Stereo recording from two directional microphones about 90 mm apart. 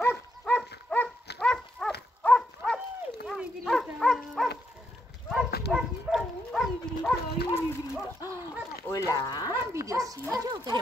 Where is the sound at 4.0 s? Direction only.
5° left (ahead or behind).